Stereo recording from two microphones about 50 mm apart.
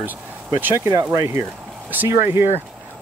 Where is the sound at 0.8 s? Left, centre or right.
Right.